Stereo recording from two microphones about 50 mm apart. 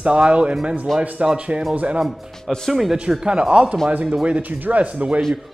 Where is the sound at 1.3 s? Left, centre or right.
Right.